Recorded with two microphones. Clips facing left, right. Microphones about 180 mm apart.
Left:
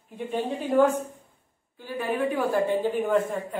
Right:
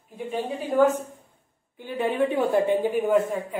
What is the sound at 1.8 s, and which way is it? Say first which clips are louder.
A woman's voice: right 3 dB; 20° right (ahead or behind).